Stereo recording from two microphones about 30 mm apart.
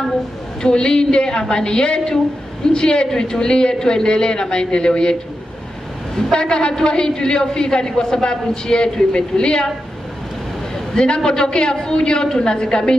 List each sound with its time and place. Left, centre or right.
0.6 s a man's voice: left
6.3 s a man's voice: left
11.0 s a man's voice: left